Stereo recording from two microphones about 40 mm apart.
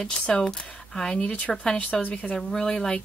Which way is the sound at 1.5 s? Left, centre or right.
Centre.